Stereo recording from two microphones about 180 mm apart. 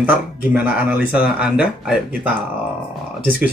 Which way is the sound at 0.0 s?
10° right (ahead or behind).